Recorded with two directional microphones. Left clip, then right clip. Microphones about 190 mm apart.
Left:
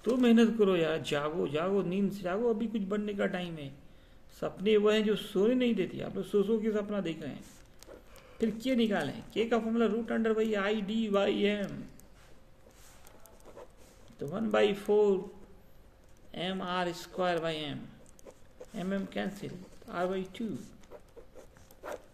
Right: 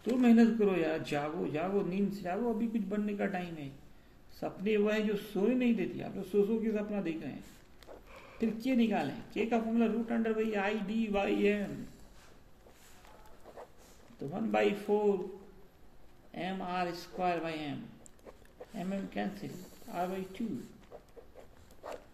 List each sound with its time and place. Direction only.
0.2 s speech: 65° left (ahead or behind)
8.4 s speech: 60° left (ahead or behind)
14.3 s speech: 65° left (ahead or behind)
16.3 s speech: 65° left (ahead or behind)
18.8 s speech: 65° left (ahead or behind)